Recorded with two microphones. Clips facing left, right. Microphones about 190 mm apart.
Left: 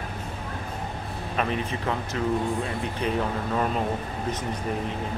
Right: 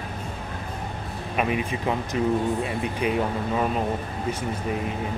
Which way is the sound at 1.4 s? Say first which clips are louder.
Right 3 dB; 10° right (ahead or behind).